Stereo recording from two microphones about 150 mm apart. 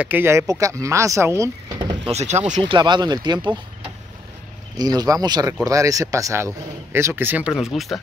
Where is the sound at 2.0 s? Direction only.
45° right (ahead or behind).